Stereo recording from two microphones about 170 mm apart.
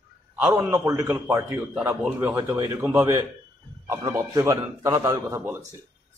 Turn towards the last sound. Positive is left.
turn(degrees=-15)  # may be behind; listen again after turning